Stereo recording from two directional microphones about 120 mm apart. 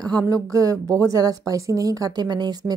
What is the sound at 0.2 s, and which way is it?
Speech, 25° right (ahead or behind).